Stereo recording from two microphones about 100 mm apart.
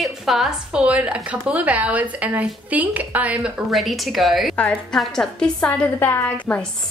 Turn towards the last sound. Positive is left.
turn(degrees=15)  # may be behind; listen again after turning